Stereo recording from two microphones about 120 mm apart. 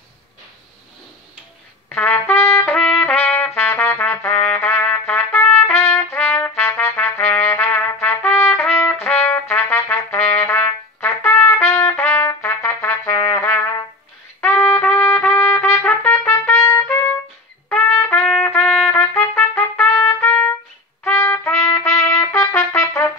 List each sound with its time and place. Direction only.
1.9 s trumpet: 20° left (ahead or behind)